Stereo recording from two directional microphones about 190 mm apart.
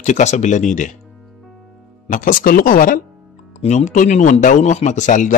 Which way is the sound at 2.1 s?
45° left (ahead or behind).